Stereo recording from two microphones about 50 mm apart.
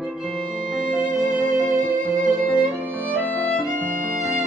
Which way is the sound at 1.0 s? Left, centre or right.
Right.